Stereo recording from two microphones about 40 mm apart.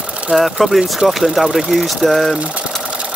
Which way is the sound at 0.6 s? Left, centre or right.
Centre.